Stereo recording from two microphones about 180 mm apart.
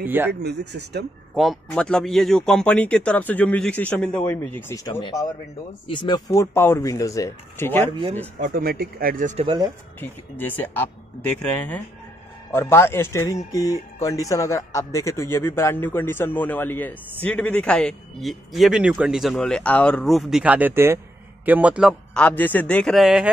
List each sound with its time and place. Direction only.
0.0 s speech: 10° right (ahead or behind)
0.3 s speech: 65° right (ahead or behind)
1.3 s speech: centre (ahead or behind)
8.4 s speech: 55° right (ahead or behind)
9.4 s speech: 25° right (ahead or behind)
9.9 s speech: 10° left (ahead or behind)
12.4 s a man's voice: 15° left (ahead or behind)